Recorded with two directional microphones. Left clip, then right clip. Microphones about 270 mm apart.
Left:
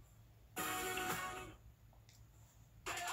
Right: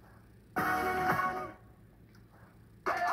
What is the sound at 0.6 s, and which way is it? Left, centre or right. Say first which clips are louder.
Music: right 11 dB; right.